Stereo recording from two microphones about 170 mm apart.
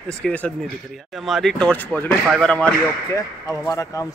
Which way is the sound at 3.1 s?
20° left (ahead or behind).